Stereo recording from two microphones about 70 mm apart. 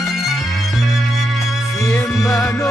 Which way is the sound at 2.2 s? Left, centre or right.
Left.